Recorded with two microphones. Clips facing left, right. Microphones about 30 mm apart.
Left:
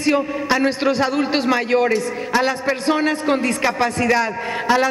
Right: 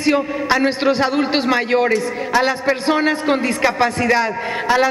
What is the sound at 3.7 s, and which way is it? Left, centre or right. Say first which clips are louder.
Speech: right 3 dB; right.